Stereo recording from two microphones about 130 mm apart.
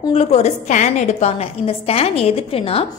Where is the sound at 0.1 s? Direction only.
55° left (ahead or behind).